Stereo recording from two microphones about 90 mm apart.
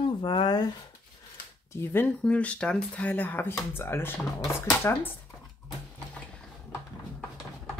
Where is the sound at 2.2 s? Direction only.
15° left (ahead or behind).